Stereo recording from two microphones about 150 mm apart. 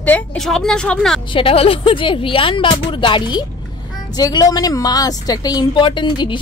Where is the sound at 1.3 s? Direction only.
40° left (ahead or behind).